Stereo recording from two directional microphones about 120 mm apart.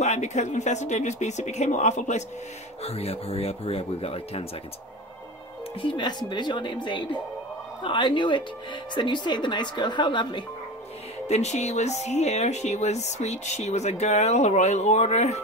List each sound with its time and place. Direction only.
0.0 s speech: 70° left (ahead or behind)
2.8 s speech: 60° left (ahead or behind)
5.8 s speech: 40° left (ahead or behind)
11.2 s speech: 70° left (ahead or behind)